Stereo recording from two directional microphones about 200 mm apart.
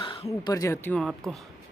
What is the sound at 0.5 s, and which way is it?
Speech, 15° left (ahead or behind).